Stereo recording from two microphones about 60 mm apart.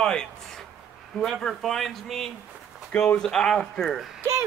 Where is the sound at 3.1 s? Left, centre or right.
Centre.